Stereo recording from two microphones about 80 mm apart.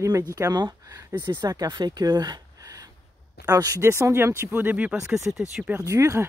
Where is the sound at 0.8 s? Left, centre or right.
Right.